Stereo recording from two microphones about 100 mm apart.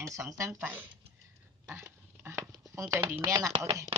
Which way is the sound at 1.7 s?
25° right (ahead or behind).